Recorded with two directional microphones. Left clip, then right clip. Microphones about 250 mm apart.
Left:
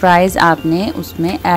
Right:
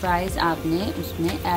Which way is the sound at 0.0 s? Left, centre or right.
Left.